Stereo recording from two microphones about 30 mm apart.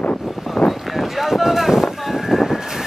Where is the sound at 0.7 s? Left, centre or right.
Centre.